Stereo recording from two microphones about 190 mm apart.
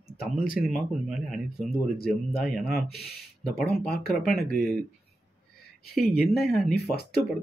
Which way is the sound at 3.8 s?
55° left (ahead or behind).